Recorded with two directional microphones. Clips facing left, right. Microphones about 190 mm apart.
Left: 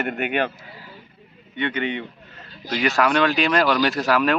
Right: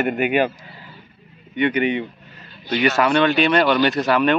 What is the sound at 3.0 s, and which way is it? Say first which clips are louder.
Speech: right 1 dB; centre (ahead or behind).